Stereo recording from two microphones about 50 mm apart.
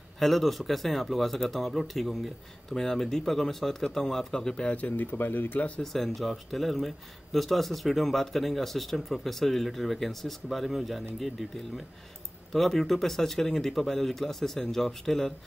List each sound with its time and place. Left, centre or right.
0.2 s speech: centre
2.7 s speech: centre
4.6 s speech: left
5.1 s speech: left
5.8 s speech: centre